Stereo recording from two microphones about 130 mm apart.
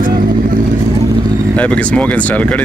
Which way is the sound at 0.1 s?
90° right.